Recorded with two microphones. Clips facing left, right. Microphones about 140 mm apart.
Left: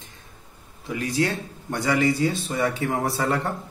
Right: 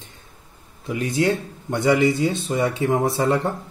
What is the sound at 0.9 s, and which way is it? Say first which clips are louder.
Speech: right 4 dB; 25° right (ahead or behind).